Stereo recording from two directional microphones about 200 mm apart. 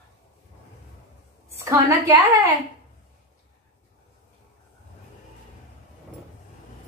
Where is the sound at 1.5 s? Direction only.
15° right (ahead or behind).